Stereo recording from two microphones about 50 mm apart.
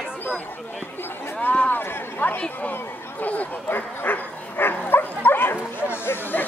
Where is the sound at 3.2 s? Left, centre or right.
Left.